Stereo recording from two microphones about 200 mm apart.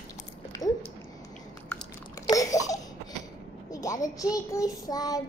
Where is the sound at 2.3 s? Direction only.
15° left (ahead or behind).